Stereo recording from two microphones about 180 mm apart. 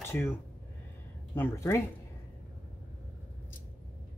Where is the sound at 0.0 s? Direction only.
10° left (ahead or behind).